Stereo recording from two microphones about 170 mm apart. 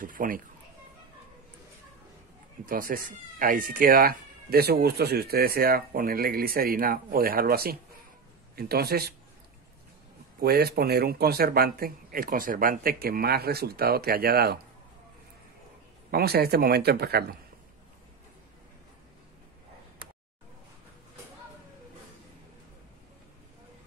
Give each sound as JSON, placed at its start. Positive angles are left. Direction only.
{"t": 0.0, "sound": "speech", "side_deg": -55}
{"t": 2.6, "sound": "a man's voice", "side_deg": -55}
{"t": 10.4, "sound": "speech", "side_deg": -70}
{"t": 16.1, "sound": "a man's voice", "side_deg": -65}